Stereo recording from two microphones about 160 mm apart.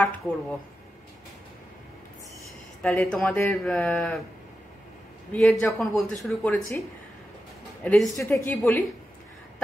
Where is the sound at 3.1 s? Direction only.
5° left (ahead or behind).